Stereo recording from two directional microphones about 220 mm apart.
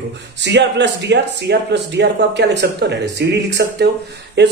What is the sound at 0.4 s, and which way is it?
Speech, 50° right (ahead or behind).